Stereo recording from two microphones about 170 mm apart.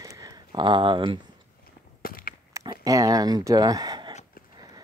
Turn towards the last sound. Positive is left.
turn(degrees=-25)  # may be behind; listen again after turning